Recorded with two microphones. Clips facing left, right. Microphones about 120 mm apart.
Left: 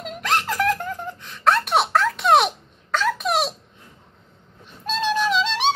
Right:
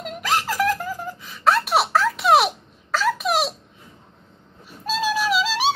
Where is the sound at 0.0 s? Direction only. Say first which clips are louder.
Even; centre (ahead or behind).